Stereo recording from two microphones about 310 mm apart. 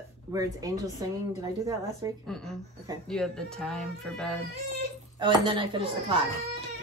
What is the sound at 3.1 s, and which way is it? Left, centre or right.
A woman's voice, centre.